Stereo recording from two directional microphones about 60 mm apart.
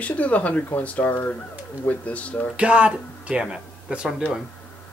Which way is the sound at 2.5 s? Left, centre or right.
Right.